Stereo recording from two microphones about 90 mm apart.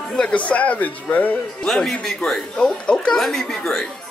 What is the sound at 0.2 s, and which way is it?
Speech, 15° left (ahead or behind).